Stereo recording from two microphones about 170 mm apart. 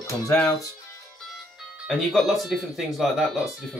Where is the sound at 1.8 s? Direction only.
Centre (ahead or behind).